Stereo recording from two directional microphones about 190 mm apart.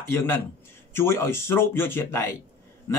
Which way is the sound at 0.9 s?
15° left (ahead or behind).